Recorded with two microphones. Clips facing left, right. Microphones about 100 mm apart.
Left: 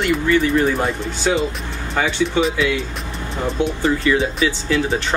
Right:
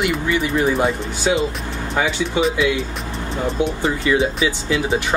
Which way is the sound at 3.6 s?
15° right (ahead or behind).